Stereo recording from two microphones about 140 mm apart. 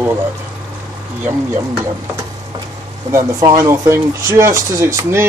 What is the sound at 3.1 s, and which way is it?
Speech, 25° right (ahead or behind).